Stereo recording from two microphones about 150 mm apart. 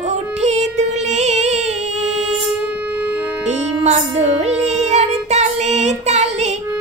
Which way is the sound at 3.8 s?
50° right (ahead or behind).